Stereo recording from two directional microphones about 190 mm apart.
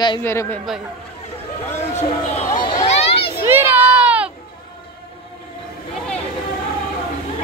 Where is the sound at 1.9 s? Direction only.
35° left (ahead or behind).